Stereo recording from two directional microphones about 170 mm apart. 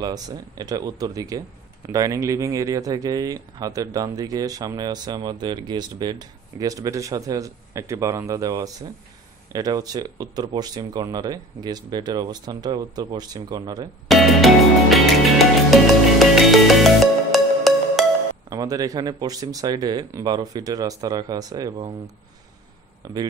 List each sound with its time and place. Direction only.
0.0 s speech: 25° right (ahead or behind)
14.0 s music: centre (ahead or behind)
18.5 s speech: 20° right (ahead or behind)
23.0 s speech: 25° right (ahead or behind)